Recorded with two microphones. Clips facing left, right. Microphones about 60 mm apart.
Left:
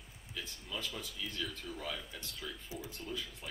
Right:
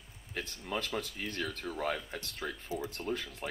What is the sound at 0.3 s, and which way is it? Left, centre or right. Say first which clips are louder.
Speech: right 7 dB; right.